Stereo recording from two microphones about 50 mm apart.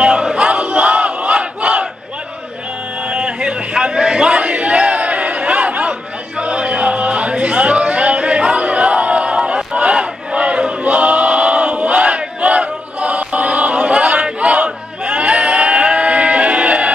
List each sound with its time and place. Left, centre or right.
0.0 s battle cry: centre
0.5 s battle cry: right
3.1 s crowd: centre
6.4 s a sound: right
9.8 s battle cry: right